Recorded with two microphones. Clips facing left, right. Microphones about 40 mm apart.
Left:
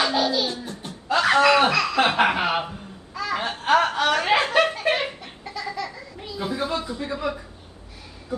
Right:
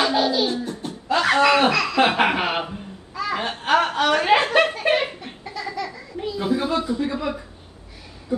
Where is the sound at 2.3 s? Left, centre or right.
Right.